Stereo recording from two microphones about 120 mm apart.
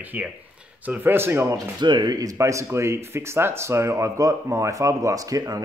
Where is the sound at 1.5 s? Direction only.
40° right (ahead or behind).